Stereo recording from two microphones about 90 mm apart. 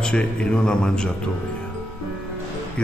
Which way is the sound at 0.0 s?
10° left (ahead or behind).